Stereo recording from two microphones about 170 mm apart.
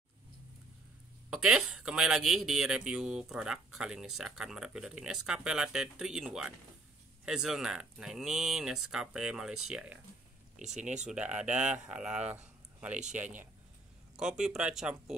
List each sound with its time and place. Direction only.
1.3 s speech: 5° right (ahead or behind)
11.1 s speech: 5° right (ahead or behind)